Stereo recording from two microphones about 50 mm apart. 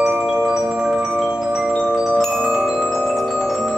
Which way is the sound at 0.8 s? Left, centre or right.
Centre.